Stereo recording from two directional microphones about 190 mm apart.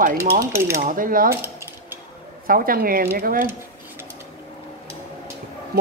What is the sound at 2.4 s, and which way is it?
Speech, 50° right (ahead or behind).